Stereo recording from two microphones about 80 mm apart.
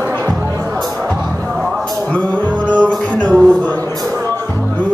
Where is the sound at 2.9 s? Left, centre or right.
Centre.